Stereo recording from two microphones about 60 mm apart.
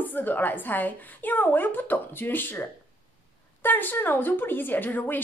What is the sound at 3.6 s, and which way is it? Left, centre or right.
A woman's voice, left.